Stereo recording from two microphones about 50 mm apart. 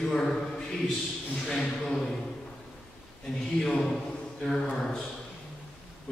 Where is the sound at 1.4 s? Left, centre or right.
Centre.